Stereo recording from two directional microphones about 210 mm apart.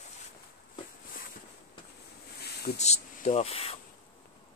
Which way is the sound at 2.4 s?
50° left (ahead or behind).